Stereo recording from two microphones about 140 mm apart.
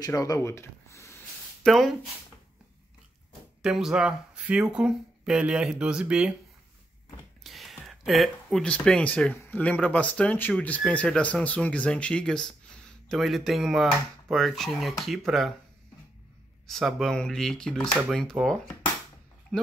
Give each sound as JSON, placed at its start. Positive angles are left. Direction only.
{"t": 0.0, "sound": "speech", "side_deg": 25}
{"t": 1.6, "sound": "speech", "side_deg": 0}
{"t": 3.6, "sound": "speech", "side_deg": -5}
{"t": 7.4, "sound": "speech", "side_deg": 0}
{"t": 16.6, "sound": "speech", "side_deg": 5}